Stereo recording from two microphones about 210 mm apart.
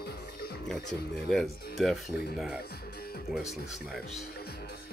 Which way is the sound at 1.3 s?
Centre (ahead or behind).